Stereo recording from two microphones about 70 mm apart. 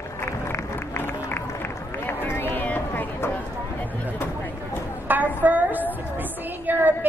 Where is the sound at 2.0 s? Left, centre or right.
Left.